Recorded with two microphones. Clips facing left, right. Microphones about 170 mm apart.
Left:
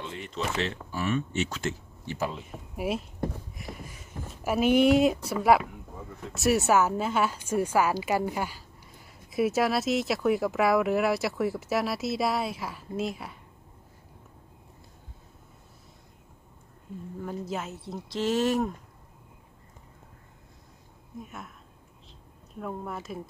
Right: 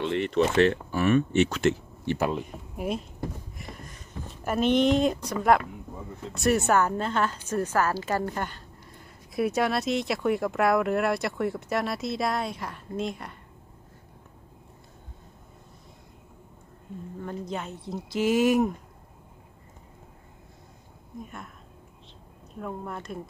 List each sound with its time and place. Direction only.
0.0 s speech: 70° right (ahead or behind)
0.6 s speech: 55° right (ahead or behind)
2.7 s a woman's voice: 5° left (ahead or behind)
17.2 s speech: 5° left (ahead or behind)
18.2 s speech: 10° right (ahead or behind)
21.2 s speech: centre (ahead or behind)
22.6 s speech: centre (ahead or behind)